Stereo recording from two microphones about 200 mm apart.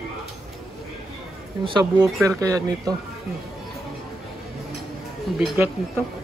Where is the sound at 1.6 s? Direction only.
15° right (ahead or behind).